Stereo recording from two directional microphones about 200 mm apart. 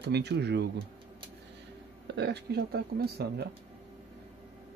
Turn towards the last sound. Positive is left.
turn(degrees=-55)  # may be behind; listen again after turning